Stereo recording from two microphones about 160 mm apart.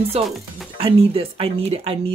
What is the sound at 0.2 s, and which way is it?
Speech, 40° right (ahead or behind).